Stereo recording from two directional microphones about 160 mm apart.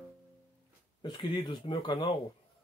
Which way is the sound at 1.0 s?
30° left (ahead or behind).